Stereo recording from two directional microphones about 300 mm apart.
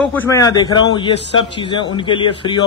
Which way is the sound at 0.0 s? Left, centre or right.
Centre.